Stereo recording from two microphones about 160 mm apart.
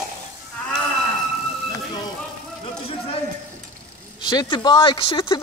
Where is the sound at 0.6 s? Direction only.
10° left (ahead or behind).